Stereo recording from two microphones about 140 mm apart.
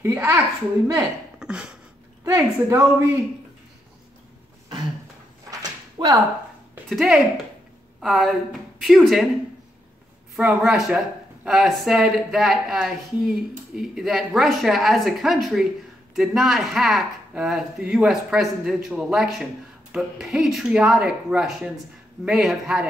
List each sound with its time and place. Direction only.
0.0 s speech: 20° right (ahead or behind)
1.4 s a sound: 5° right (ahead or behind)
2.2 s speech: 20° right (ahead or behind)
5.5 s a sound: 25° right (ahead or behind)
6.9 s speech: centre (ahead or behind)
10.3 s speech: 5° right (ahead or behind)